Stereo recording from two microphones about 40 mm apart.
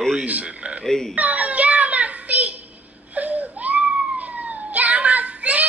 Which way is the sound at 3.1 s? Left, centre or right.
Right.